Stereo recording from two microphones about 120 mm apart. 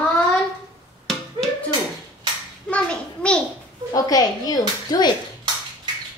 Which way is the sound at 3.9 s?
30° left (ahead or behind).